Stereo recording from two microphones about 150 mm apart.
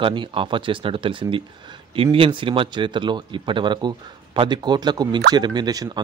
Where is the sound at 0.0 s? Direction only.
35° right (ahead or behind).